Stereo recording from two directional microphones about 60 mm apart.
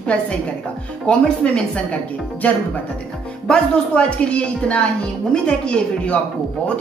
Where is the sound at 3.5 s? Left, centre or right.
Centre.